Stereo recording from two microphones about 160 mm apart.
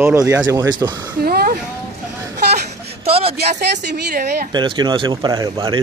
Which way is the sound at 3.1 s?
35° right (ahead or behind).